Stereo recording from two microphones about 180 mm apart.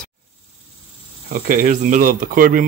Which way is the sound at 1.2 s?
55° right (ahead or behind).